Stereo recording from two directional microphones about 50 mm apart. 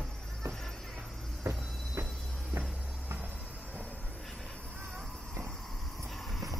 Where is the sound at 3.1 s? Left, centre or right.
Right.